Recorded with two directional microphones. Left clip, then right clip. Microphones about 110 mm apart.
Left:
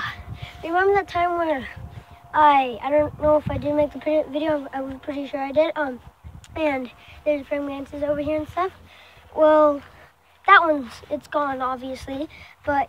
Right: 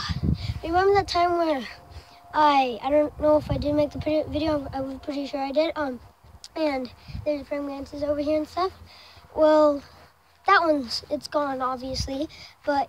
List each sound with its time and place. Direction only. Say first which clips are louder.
0.0 s a sound: left 1 dB; 30° right (ahead or behind)
1.0 s a woman's voice: even; 40° right (ahead or behind); by 5.9 s 15° right (ahead or behind)
6.5 s speech: left 2 dB; 5° right (ahead or behind)
8.2 s a woman's voice: left 1 dB; 20° right (ahead or behind)